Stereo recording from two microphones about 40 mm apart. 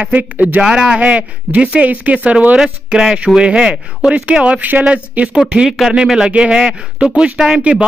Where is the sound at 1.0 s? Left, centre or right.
Right.